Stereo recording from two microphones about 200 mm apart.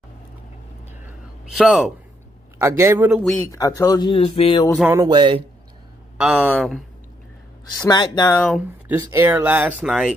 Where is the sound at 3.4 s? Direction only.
15° left (ahead or behind).